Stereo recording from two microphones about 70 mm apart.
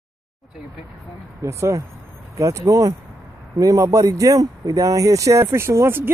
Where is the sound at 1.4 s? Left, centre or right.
Right.